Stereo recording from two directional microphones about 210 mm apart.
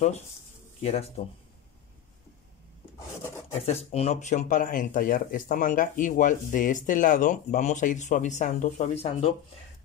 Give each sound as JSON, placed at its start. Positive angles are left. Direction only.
{"t": 0.8, "sound": "speech", "side_deg": 30}
{"t": 3.6, "sound": "speech", "side_deg": 30}